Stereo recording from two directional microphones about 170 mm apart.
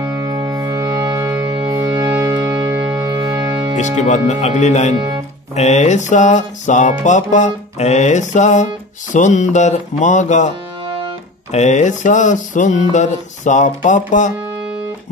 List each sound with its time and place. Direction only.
0.0 s music: 25° right (ahead or behind)
3.7 s music: 45° left (ahead or behind)
4.9 s speech: 30° right (ahead or behind)
5.6 s music: 45° left (ahead or behind)
11.5 s music: 45° left (ahead or behind)